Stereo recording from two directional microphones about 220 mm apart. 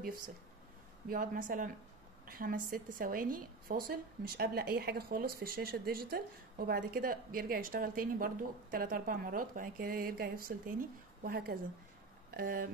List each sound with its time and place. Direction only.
1.0 s a woman's voice: 40° right (ahead or behind)